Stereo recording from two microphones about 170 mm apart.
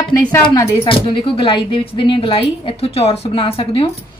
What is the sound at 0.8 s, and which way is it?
Speech, 30° left (ahead or behind).